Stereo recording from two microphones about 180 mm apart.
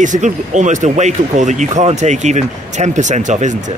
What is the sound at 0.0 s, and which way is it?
Speech, 45° right (ahead or behind).